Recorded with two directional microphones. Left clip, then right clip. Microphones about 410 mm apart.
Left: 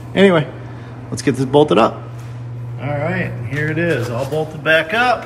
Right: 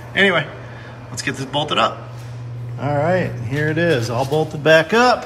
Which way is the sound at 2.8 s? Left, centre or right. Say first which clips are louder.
Right 3 dB; right.